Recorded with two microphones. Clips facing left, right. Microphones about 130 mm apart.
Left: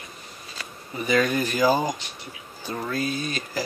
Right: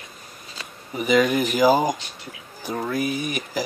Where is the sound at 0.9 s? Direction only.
15° right (ahead or behind).